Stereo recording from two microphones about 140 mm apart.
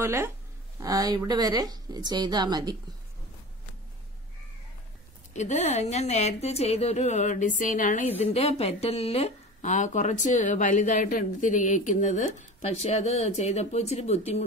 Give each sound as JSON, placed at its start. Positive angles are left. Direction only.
{"t": 0.0, "sound": "speech", "side_deg": -20}
{"t": 5.3, "sound": "speech", "side_deg": 55}
{"t": 8.3, "sound": "speech", "side_deg": 50}